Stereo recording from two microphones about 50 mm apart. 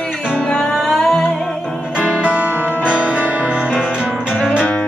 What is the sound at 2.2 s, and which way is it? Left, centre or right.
Music, right.